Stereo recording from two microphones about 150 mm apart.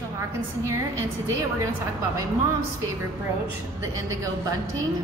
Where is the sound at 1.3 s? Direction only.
20° right (ahead or behind).